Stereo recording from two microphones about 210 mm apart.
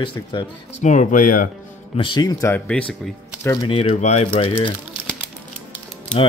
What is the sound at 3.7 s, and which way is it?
Speech, 25° left (ahead or behind).